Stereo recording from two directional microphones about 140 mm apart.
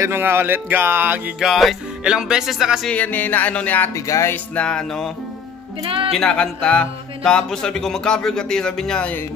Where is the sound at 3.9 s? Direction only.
20° left (ahead or behind); by 5.1 s 5° left (ahead or behind).